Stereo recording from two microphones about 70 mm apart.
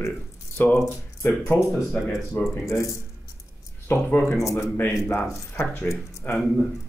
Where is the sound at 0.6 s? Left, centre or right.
Left.